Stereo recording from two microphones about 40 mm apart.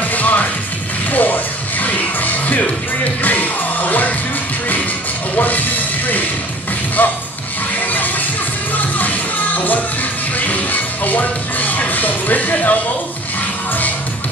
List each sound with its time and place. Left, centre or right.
0.1 s music: left
5.3 s a sound: left
7.0 s music: left
8.7 s music: left
10.4 s music: left